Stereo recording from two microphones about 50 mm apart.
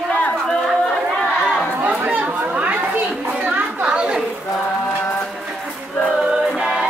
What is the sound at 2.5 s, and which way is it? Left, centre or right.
Chatter, right.